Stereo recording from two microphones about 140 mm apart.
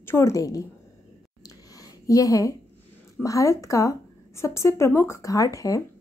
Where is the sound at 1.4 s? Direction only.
25° left (ahead or behind).